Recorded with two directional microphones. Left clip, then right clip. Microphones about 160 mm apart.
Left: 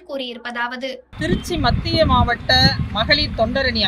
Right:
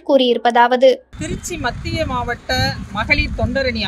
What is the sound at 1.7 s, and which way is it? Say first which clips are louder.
Speech: left 7 dB; 10° right (ahead or behind).